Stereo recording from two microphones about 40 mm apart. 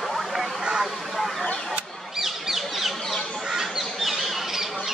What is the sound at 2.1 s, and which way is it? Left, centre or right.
Bird, centre.